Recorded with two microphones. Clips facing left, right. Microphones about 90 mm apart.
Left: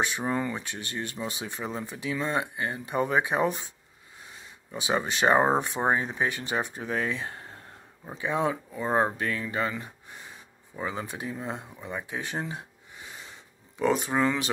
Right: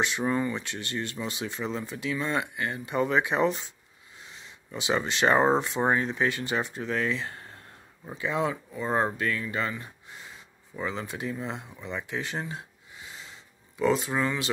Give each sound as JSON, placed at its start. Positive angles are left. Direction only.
{"t": 0.2, "sound": "speech", "side_deg": 30}
{"t": 0.7, "sound": "speech", "side_deg": 20}
{"t": 3.3, "sound": "speech", "side_deg": 10}
{"t": 4.6, "sound": "speech", "side_deg": 20}
{"t": 10.9, "sound": "speech", "side_deg": 20}
{"t": 14.0, "sound": "speech", "side_deg": 30}